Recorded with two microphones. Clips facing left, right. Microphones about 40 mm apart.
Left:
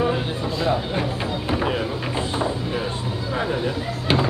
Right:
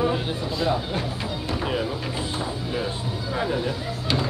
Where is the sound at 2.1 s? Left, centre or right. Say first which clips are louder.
Left 5 dB; left.